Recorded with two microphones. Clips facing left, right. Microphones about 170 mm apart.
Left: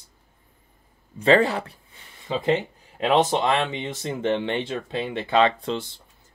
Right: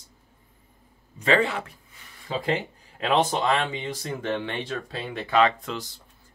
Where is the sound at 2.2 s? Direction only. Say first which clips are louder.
Left 4 dB; 20° left (ahead or behind).